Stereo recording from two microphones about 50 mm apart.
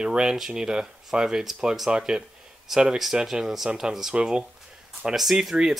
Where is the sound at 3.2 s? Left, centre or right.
Centre.